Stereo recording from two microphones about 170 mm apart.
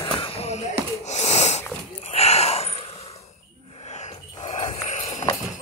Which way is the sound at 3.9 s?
40° left (ahead or behind).